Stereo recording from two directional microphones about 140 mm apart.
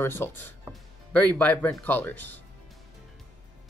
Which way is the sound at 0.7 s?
10° left (ahead or behind).